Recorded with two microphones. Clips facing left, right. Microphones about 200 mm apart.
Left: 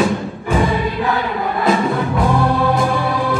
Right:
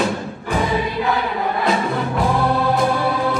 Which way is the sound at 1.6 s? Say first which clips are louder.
Left 6 dB; centre (ahead or behind).